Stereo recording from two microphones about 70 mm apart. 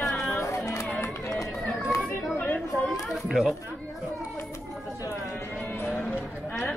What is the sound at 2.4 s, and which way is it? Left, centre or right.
Chatter, left.